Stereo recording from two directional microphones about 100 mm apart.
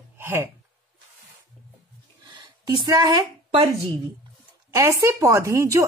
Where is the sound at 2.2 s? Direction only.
50° right (ahead or behind).